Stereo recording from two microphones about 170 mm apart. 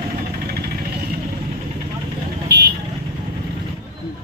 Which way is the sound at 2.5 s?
75° right (ahead or behind).